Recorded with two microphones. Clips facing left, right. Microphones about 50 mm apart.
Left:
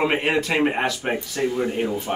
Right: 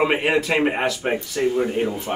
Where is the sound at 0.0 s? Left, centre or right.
Centre.